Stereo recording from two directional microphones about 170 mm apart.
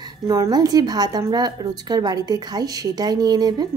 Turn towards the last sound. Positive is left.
turn(degrees=-25)  # may be behind; listen again after turning